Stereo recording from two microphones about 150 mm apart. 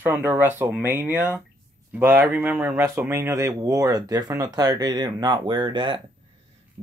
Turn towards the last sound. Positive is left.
turn(degrees=-30)  # may be behind; listen again after turning